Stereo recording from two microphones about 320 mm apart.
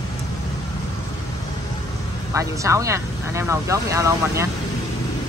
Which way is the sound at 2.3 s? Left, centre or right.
Centre.